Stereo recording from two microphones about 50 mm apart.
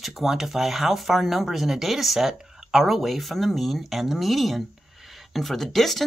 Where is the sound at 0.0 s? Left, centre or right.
Centre.